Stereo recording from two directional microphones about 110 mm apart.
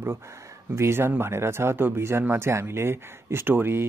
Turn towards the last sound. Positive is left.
turn(degrees=-20)  # may be behind; listen again after turning